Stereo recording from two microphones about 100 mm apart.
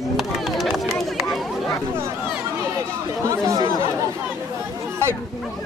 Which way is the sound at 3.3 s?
30° right (ahead or behind).